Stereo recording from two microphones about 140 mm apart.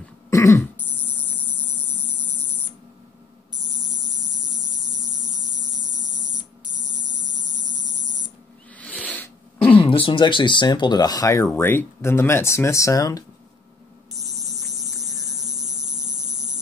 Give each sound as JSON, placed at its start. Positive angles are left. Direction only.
{"t": 0.3, "sound": "throat clearing", "side_deg": 20}
{"t": 2.0, "sound": "hum", "side_deg": 15}
{"t": 4.6, "sound": "hum", "side_deg": -60}
{"t": 8.9, "sound": "a sound", "side_deg": 10}
{"t": 9.8, "sound": "speech", "side_deg": 40}
{"t": 14.1, "sound": "hum", "side_deg": 0}